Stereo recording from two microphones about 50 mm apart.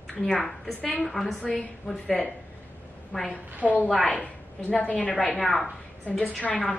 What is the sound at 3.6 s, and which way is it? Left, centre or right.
Speech, right.